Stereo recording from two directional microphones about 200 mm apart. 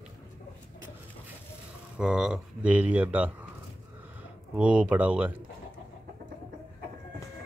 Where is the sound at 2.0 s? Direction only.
5° right (ahead or behind).